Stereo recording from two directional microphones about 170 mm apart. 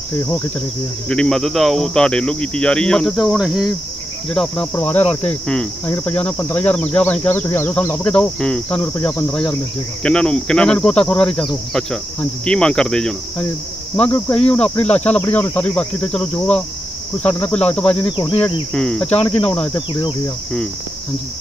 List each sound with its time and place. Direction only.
1.0 s speech: 5° left (ahead or behind)
18.0 s speech: 30° left (ahead or behind)
18.4 s speech: 5° left (ahead or behind)
19.9 s speech: 30° left (ahead or behind)